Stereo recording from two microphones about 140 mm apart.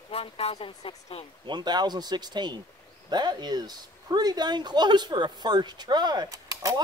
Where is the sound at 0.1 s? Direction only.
45° left (ahead or behind).